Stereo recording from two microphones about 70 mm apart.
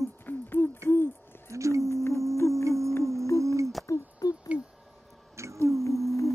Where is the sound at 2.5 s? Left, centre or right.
Right.